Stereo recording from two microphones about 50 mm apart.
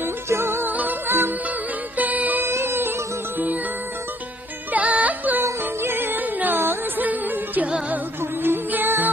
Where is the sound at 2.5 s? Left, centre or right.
Right.